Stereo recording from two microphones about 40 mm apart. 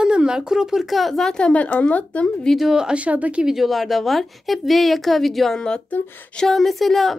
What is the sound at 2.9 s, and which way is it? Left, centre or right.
Speech, right.